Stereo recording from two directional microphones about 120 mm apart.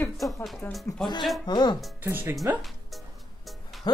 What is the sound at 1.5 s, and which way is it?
Speech, 40° left (ahead or behind).